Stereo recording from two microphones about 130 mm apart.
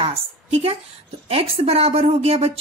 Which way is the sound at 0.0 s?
50° right (ahead or behind).